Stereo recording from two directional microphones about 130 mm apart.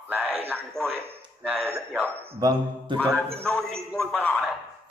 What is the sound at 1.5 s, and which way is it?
Speech, 15° right (ahead or behind).